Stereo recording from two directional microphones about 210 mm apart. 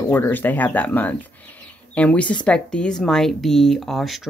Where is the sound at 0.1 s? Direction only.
10° left (ahead or behind).